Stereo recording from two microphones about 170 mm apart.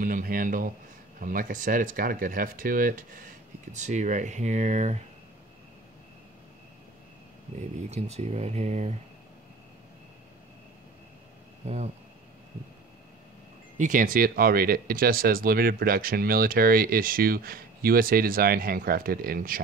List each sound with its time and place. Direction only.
0.0 s speech: 55° right (ahead or behind)
3.7 s speech: 45° right (ahead or behind)
7.9 s speech: 40° right (ahead or behind)
11.6 s a sound: 40° right (ahead or behind)
13.7 s speech: 50° right (ahead or behind)